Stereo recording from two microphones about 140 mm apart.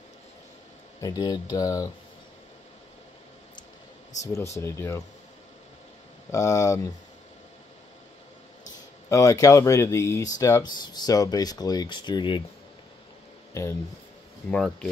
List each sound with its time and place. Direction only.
1.0 s speech: 25° left (ahead or behind)
4.2 s speech: 20° left (ahead or behind)
6.3 s speech: 25° left (ahead or behind)
9.1 s speech: 20° left (ahead or behind)
13.5 s a sound: 20° left (ahead or behind)
14.5 s speech: 5° left (ahead or behind)